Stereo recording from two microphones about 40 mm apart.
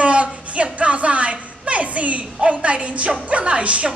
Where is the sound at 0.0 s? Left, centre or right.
Right.